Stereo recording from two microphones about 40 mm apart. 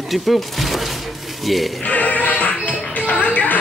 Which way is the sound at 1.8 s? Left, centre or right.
Left.